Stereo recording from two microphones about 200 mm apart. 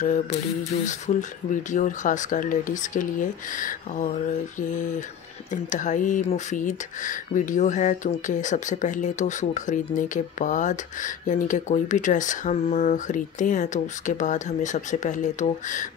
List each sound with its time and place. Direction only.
0.0 s speech: 40° left (ahead or behind)